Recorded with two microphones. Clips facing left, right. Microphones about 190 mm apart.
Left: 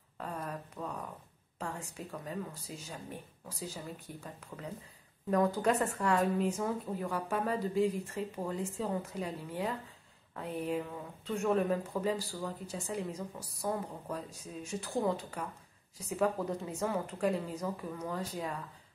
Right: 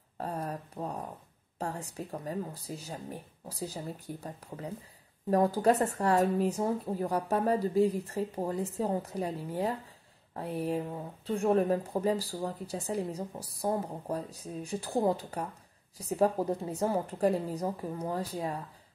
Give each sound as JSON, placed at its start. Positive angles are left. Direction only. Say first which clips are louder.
{"t": 0.2, "sound": "speech", "louder": "right 4 dB", "side_deg": -35}